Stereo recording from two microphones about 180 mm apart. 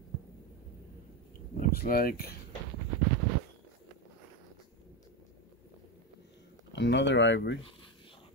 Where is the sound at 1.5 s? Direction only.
55° left (ahead or behind).